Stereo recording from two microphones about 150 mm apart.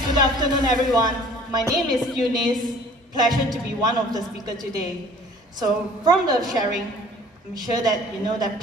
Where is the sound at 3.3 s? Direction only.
25° right (ahead or behind).